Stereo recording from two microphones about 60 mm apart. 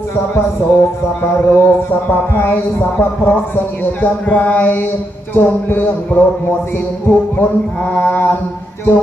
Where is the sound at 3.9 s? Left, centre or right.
Left.